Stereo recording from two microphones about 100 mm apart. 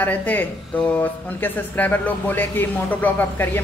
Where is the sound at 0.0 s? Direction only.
15° left (ahead or behind).